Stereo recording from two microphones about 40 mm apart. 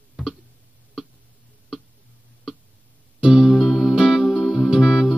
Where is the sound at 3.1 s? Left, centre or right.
Centre.